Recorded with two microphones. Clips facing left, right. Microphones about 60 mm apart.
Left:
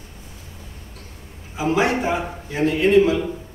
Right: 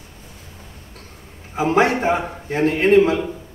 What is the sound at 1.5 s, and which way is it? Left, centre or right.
A man's voice, right.